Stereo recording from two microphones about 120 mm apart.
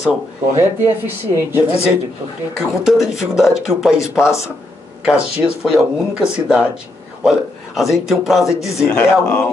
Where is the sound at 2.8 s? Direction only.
5° right (ahead or behind).